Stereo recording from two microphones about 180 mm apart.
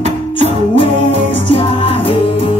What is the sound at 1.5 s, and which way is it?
Music, 30° left (ahead or behind).